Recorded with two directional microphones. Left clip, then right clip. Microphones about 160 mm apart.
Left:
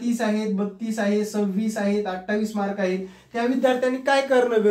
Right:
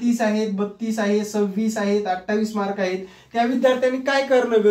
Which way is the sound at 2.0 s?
15° left (ahead or behind).